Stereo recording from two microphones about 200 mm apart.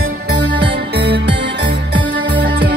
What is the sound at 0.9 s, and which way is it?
Music, 55° right (ahead or behind).